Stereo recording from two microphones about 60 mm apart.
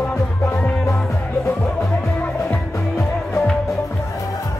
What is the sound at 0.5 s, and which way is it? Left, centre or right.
Music, left.